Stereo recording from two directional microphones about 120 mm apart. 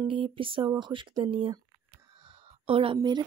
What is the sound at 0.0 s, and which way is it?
Speech, 45° right (ahead or behind).